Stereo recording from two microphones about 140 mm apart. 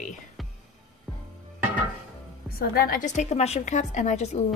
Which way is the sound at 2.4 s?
90° left.